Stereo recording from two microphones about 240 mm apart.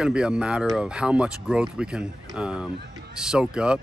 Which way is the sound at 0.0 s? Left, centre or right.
Centre.